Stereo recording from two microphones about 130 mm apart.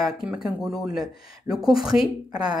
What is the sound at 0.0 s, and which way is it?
Speech, 5° right (ahead or behind).